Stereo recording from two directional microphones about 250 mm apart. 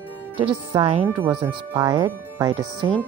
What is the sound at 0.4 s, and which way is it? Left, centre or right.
Speech, right.